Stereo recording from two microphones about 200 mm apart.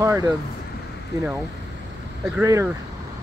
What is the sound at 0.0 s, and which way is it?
Speech, 15° right (ahead or behind).